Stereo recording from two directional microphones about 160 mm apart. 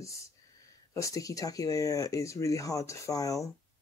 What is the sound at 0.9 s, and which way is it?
Speech, 20° left (ahead or behind).